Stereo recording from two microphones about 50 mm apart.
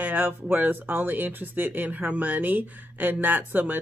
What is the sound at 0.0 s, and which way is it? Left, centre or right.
Speech, right.